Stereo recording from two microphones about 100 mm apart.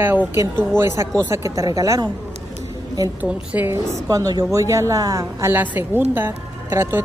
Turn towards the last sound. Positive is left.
turn(degrees=-25)  # may be behind; listen again after turning